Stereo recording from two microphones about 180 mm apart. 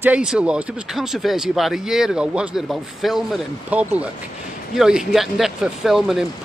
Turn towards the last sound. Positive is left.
turn(degrees=0)  # may be behind; listen again after turning